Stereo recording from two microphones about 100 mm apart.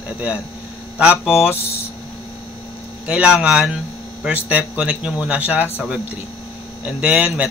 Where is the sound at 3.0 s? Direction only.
10° right (ahead or behind).